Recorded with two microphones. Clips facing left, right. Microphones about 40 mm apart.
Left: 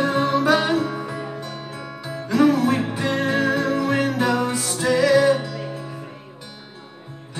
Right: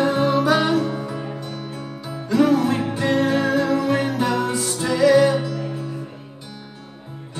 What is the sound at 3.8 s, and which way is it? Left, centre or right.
Music, right.